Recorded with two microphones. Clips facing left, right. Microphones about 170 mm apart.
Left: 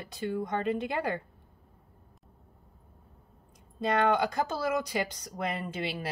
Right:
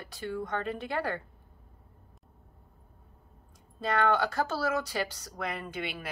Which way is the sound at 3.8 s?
20° left (ahead or behind).